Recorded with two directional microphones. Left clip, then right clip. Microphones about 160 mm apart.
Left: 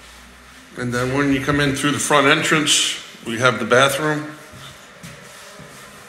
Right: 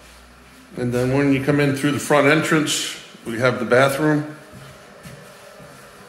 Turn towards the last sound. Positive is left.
turn(degrees=-25)  # may be behind; listen again after turning